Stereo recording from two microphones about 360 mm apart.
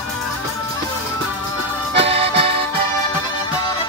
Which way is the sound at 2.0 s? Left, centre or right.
Centre.